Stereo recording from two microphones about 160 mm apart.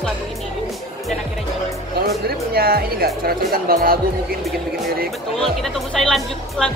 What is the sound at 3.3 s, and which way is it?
Speech, 70° right (ahead or behind).